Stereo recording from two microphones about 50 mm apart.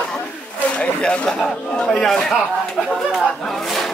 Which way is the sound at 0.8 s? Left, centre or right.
Left.